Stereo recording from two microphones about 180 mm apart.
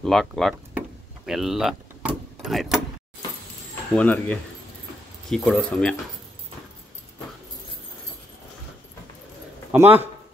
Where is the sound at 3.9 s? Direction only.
10° left (ahead or behind).